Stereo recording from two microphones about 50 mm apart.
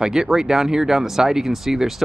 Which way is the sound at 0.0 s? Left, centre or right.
Centre.